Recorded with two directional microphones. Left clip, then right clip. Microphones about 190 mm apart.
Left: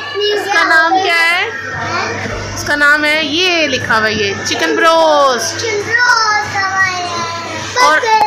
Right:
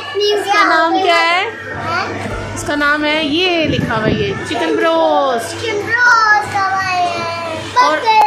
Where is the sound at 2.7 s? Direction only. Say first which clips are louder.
Left 4 dB; 20° right (ahead or behind).